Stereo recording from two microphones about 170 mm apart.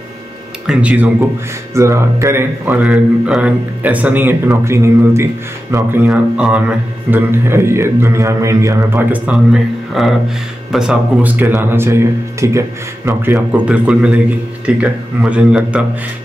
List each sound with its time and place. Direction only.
0.7 s speech: 5° right (ahead or behind)
6.0 s speech: 5° right (ahead or behind)